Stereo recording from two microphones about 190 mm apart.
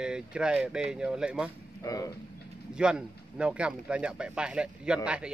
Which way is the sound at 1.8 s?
20° left (ahead or behind).